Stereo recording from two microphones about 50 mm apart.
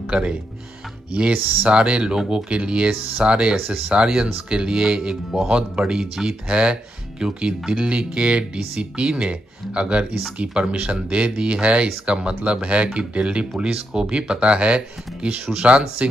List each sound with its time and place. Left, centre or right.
0.1 s speech: centre
1.6 s speech: right